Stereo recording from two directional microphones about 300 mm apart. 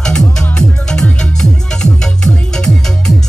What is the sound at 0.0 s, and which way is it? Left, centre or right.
Music, centre.